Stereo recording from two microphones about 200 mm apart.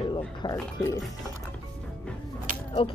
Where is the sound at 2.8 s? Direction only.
25° left (ahead or behind).